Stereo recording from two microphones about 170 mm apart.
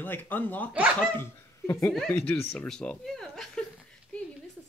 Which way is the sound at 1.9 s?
5° left (ahead or behind).